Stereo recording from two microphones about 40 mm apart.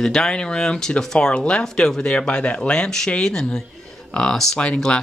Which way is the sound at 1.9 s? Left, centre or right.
Left.